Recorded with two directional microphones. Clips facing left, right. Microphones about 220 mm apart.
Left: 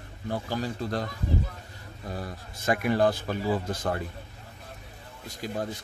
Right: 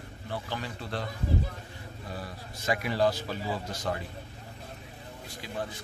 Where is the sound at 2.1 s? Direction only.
45° left (ahead or behind).